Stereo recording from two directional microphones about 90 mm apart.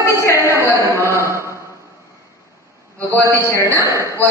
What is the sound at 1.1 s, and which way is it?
Chant, 30° right (ahead or behind).